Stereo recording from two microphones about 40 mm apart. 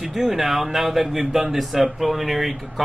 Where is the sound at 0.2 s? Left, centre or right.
Centre.